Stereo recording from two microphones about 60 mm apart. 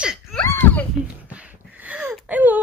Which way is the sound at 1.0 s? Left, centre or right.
Right.